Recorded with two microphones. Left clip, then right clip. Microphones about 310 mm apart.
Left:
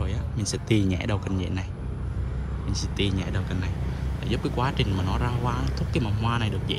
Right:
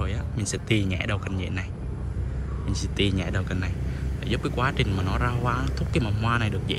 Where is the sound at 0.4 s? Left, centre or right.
Centre.